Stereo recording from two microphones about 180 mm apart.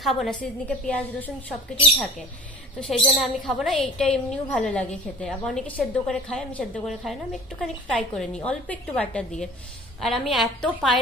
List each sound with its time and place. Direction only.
0.0 s a woman's voice: centre (ahead or behind)
2.8 s a woman's voice: centre (ahead or behind)